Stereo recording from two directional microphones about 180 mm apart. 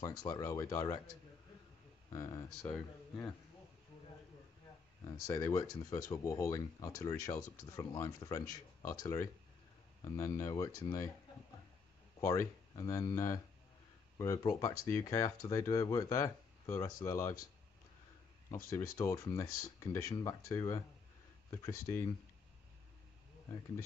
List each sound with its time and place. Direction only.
0.0 s speech: 20° left (ahead or behind)
2.1 s speech: 15° left (ahead or behind)
2.6 s speech: 5° left (ahead or behind)
5.0 s speech: 15° left (ahead or behind)
12.2 s speech: 15° left (ahead or behind)
18.5 s speech: 15° left (ahead or behind)